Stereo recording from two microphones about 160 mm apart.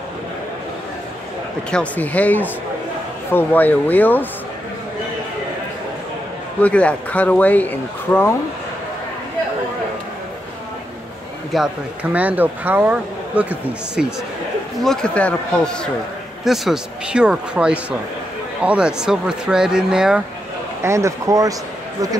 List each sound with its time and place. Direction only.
1.7 s speech: 10° left (ahead or behind)
6.6 s speech: 10° left (ahead or behind)
11.5 s speech: 5° right (ahead or behind)
14.8 s speech: 5° left (ahead or behind)
20.8 s speech: 20° right (ahead or behind)